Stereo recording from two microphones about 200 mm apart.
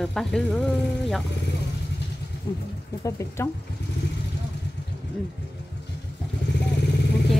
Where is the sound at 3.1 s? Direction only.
15° left (ahead or behind).